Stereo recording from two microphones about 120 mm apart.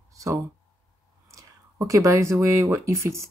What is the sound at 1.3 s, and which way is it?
Speech, 25° right (ahead or behind).